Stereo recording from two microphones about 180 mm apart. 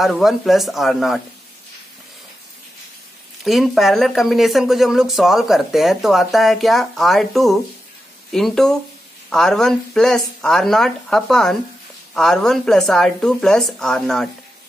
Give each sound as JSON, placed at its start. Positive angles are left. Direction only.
{"t": 0.0, "sound": "speech", "side_deg": 0}
{"t": 3.4, "sound": "speech", "side_deg": 0}